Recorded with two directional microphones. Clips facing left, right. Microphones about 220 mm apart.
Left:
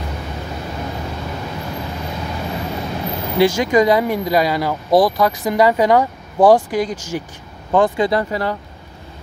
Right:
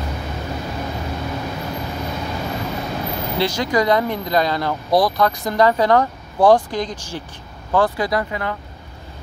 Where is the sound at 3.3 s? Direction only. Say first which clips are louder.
Left 6 dB; 10° left (ahead or behind).